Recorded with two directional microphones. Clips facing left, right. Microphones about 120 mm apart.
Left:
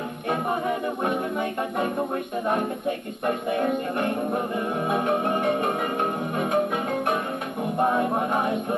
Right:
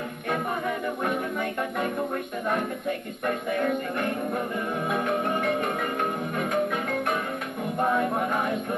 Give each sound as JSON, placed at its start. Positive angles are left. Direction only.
{"t": 0.3, "sound": "music", "side_deg": 25}
{"t": 3.3, "sound": "music", "side_deg": 25}
{"t": 6.5, "sound": "marimba", "side_deg": 25}
{"t": 7.8, "sound": "music", "side_deg": 25}